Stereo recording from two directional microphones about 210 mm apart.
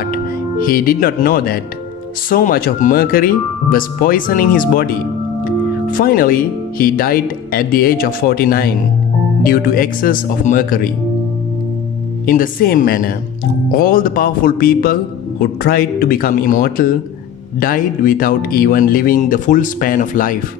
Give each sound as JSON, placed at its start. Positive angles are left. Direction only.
{"t": 0.0, "sound": "speech", "side_deg": 45}
{"t": 12.3, "sound": "speech", "side_deg": 40}